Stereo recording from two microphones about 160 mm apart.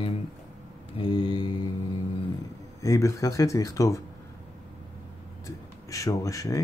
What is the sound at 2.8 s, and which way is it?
Speech, 20° left (ahead or behind).